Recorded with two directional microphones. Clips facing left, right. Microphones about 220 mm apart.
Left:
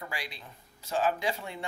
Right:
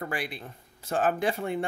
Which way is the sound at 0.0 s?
55° right (ahead or behind).